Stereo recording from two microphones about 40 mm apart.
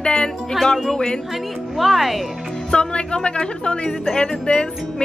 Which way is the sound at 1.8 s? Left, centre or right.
Centre.